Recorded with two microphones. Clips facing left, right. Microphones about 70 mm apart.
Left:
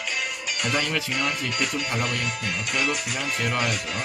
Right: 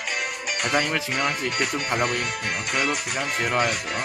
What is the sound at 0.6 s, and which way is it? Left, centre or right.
Speech, right.